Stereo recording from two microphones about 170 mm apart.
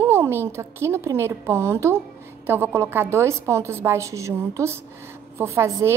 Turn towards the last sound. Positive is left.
turn(degrees=-15)  # may be behind; listen again after turning